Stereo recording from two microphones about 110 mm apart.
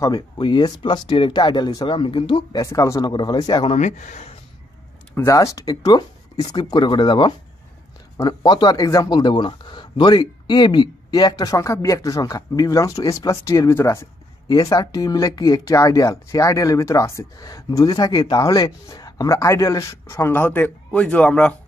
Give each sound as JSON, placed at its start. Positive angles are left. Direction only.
{"t": 0.4, "sound": "speech", "side_deg": 40}
{"t": 2.5, "sound": "speech", "side_deg": 30}
{"t": 3.1, "sound": "speech", "side_deg": 40}
{"t": 3.6, "sound": "speech", "side_deg": 85}
{"t": 5.1, "sound": "speech", "side_deg": 25}
{"t": 14.5, "sound": "speech", "side_deg": 35}